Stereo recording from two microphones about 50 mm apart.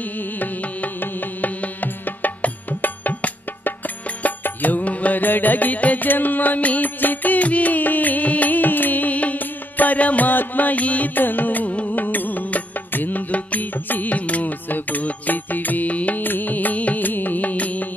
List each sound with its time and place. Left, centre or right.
1.4 s music: left